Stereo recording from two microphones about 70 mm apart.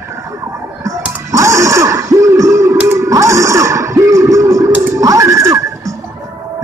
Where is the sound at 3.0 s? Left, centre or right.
Right.